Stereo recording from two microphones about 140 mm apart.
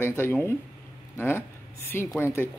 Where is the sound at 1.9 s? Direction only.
15° left (ahead or behind).